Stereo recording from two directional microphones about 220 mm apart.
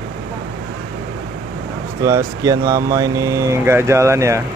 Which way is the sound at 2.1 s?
15° right (ahead or behind).